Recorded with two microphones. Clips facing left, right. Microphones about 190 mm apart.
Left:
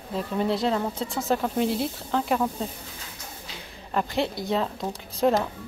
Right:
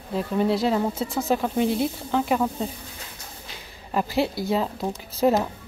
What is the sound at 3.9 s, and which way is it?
Speech, 5° right (ahead or behind).